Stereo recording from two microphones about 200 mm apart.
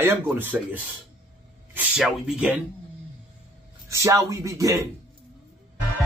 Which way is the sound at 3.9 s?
15° right (ahead or behind).